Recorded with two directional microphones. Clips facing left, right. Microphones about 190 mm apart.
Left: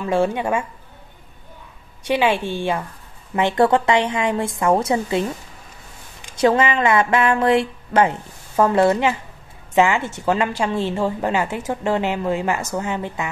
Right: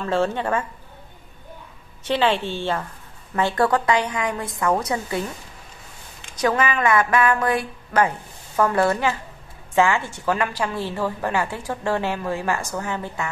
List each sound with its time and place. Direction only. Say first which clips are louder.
0.0 s a woman's voice: left 3 dB; 15° left (ahead or behind)
2.0 s a woman's voice: left 2 dB; 10° left (ahead or behind)
6.3 s a woman's voice: left 4 dB; 25° left (ahead or behind)